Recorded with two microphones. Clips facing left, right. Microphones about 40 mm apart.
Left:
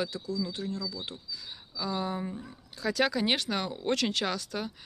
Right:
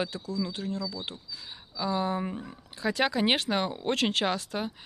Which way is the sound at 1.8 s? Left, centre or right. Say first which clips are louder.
Right 4 dB; right.